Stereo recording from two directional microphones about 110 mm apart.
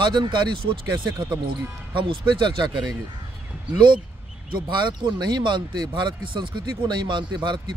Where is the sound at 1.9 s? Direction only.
50° right (ahead or behind).